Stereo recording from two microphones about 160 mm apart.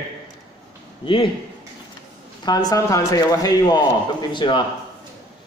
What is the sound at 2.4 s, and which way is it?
A man's voice, 25° left (ahead or behind).